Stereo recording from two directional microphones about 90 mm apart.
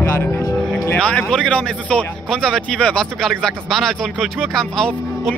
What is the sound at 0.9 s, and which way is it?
Speech, 15° left (ahead or behind).